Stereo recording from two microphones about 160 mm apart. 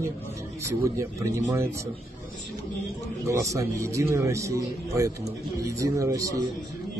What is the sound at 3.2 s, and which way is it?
A man's voice, 20° right (ahead or behind).